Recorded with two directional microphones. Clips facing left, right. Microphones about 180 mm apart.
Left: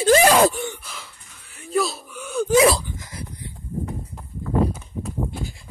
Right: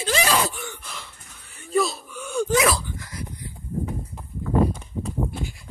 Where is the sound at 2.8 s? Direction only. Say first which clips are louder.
Even; 20° left (ahead or behind).